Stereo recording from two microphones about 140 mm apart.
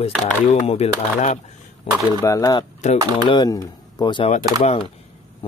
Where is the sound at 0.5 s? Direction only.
55° left (ahead or behind).